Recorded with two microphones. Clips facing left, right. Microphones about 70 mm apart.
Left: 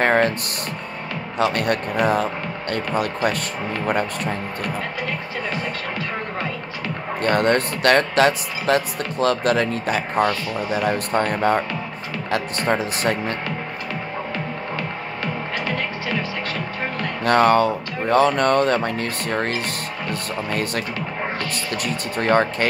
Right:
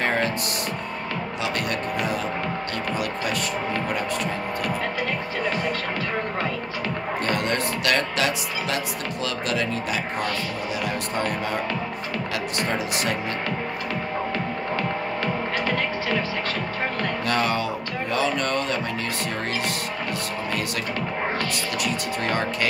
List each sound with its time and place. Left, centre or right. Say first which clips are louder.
0.0 s music: left 6 dB; left
1.4 s a man's voice: left 8 dB; left
7.2 s speech: left 8 dB; left
17.2 s speech: left 10 dB; left
21.8 s speech: left 6 dB; left